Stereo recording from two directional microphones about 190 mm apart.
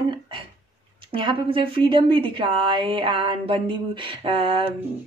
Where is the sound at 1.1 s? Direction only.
25° right (ahead or behind).